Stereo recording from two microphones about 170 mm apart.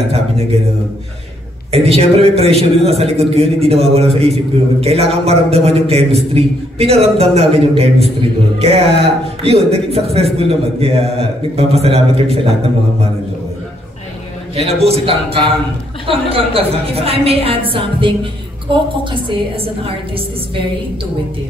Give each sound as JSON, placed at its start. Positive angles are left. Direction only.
{"t": 0.1, "sound": "a man's voice", "side_deg": -35}
{"t": 1.7, "sound": "a man's voice", "side_deg": -35}
{"t": 14.5, "sound": "a man's voice", "side_deg": -35}